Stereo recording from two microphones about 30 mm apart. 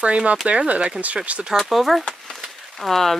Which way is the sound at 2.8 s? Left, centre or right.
Centre.